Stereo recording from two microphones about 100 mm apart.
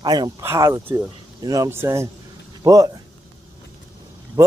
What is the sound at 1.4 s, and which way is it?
Speech, 35° right (ahead or behind).